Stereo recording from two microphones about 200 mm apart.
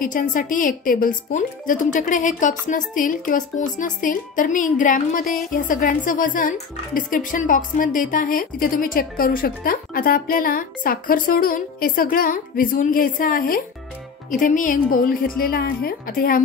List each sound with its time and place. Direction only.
0.0 s a woman's voice: 40° left (ahead or behind)